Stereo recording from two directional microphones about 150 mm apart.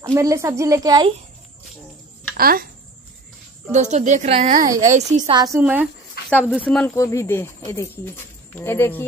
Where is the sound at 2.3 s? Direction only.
80° right.